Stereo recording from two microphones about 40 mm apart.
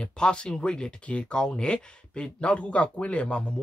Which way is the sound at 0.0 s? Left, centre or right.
Left.